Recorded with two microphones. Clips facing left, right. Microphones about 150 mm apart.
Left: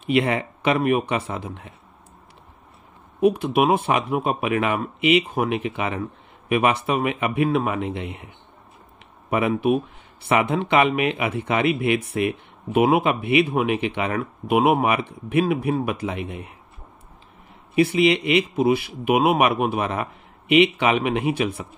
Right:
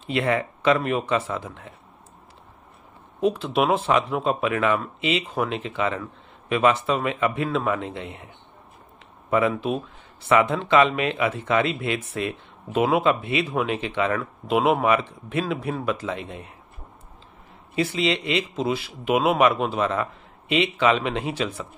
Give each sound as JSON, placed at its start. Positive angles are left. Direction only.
{"t": 0.0, "sound": "speech", "side_deg": 20}
{"t": 3.2, "sound": "speech", "side_deg": 10}
{"t": 10.2, "sound": "speech", "side_deg": 15}
{"t": 17.7, "sound": "speech", "side_deg": 15}
{"t": 18.7, "sound": "speech", "side_deg": 60}
{"t": 19.0, "sound": "speech", "side_deg": 15}